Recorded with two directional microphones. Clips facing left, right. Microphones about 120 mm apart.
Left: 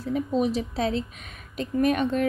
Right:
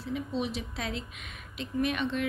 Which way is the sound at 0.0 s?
45° left (ahead or behind).